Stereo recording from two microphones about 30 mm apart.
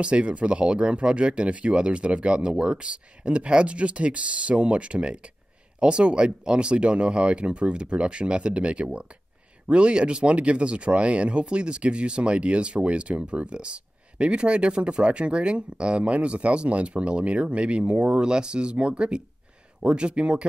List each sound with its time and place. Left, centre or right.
0.0 s speech: right